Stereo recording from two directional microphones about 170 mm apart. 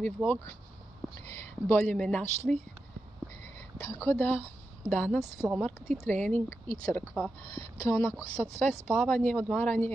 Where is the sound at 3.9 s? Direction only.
15° left (ahead or behind).